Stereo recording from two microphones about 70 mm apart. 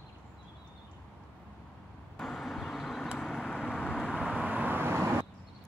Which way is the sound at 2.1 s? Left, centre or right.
Centre.